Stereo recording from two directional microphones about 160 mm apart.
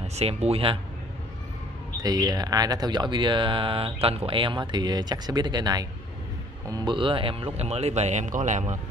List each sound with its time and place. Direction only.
0.0 s speech: 40° right (ahead or behind)
2.0 s speech: 25° right (ahead or behind); by 8.7 s 50° right (ahead or behind)